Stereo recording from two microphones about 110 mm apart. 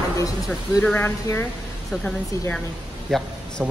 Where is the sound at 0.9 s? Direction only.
20° left (ahead or behind).